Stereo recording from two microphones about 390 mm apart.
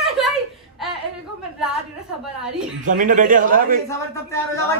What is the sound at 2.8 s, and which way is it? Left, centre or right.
A man's voice, centre.